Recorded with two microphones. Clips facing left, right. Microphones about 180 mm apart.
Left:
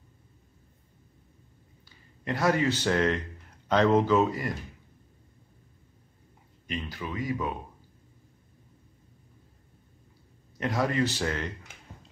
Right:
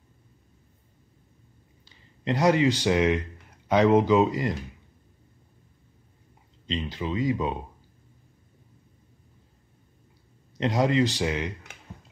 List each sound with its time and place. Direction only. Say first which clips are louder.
2.2 s speech: right 4 dB; 20° right (ahead or behind)
6.7 s speech: right 5 dB; 20° right (ahead or behind)
10.6 s speech: right 4 dB; 20° right (ahead or behind)